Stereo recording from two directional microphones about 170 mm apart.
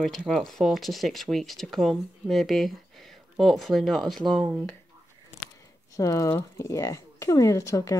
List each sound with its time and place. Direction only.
0.0 s speech: centre (ahead or behind)
5.9 s speech: 20° left (ahead or behind)